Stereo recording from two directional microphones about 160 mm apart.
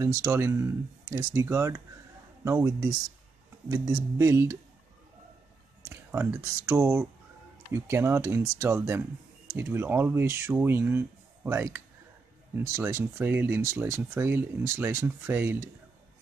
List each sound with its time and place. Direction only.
0.0 s speech: 20° right (ahead or behind)
5.9 s speech: 15° right (ahead or behind)